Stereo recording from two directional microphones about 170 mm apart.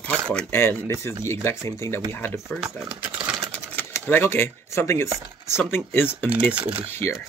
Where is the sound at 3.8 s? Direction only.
15° left (ahead or behind).